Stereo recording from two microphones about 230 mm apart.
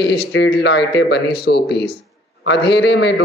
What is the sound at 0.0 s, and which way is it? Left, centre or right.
A man's voice, left.